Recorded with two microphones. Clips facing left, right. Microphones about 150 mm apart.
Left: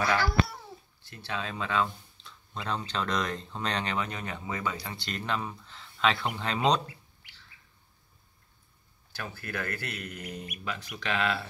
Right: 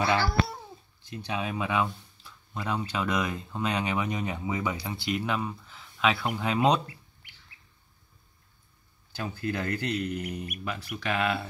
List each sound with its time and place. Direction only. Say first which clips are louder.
0.0 s a child's voice: right 1 dB; 25° right (ahead or behind); by 6.8 s 10° right (ahead or behind)
9.1 s speech: right 6 dB; 20° right (ahead or behind)